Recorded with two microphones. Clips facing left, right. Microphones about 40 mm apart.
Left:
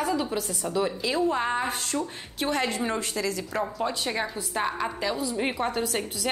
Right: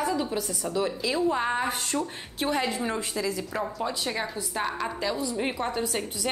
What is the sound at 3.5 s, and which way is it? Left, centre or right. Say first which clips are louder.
A woman's voice: left 2 dB; centre.